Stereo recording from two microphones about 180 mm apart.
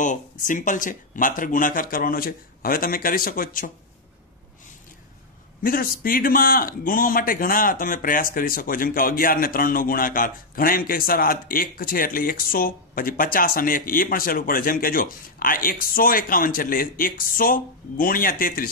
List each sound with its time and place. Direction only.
0.0 s a man's voice: 45° left (ahead or behind)
5.6 s a man's voice: 50° left (ahead or behind)